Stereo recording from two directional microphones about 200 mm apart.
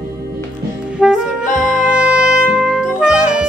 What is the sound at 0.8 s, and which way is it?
Music, 5° right (ahead or behind).